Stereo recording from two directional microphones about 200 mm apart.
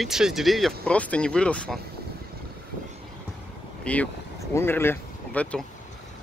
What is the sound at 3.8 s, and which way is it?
Speech, 5° left (ahead or behind).